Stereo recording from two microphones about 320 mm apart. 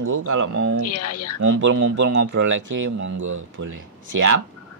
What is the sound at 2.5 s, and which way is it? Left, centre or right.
Speech, right.